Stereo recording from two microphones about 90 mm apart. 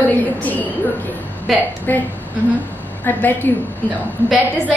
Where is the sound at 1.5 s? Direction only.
Centre (ahead or behind).